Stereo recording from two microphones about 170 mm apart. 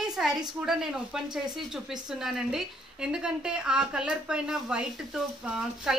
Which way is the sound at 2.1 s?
Centre (ahead or behind).